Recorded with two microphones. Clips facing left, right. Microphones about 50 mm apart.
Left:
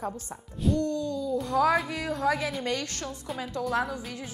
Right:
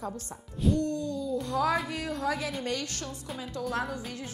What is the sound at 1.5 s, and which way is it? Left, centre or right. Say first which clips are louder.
Speech: left 4 dB; left.